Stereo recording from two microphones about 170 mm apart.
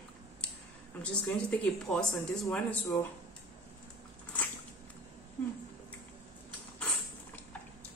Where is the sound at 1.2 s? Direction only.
5° left (ahead or behind).